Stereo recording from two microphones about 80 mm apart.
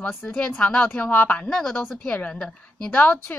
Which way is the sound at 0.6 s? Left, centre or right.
Centre.